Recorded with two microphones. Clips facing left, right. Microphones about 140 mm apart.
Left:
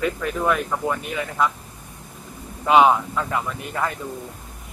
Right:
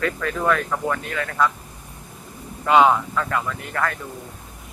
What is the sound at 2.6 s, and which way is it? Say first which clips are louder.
Speech: even; 15° left (ahead or behind).